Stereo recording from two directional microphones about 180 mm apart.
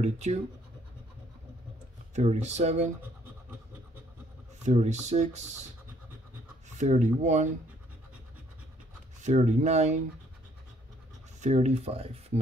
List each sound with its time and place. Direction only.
0.0 s speech: 40° right (ahead or behind)
2.1 s speech: 40° right (ahead or behind)
4.6 s speech: 40° right (ahead or behind)
6.8 s speech: 40° right (ahead or behind)
9.2 s speech: 40° right (ahead or behind)
11.4 s speech: 35° right (ahead or behind)